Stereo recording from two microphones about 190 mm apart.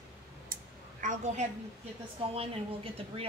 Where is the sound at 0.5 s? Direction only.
45° right (ahead or behind).